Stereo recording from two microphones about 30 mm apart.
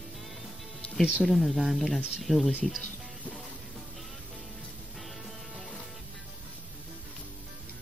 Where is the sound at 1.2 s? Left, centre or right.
Centre.